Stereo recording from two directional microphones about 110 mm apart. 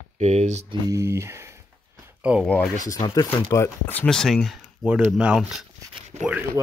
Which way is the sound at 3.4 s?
25° left (ahead or behind).